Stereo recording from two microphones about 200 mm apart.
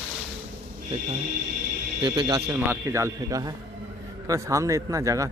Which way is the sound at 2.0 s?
30° right (ahead or behind).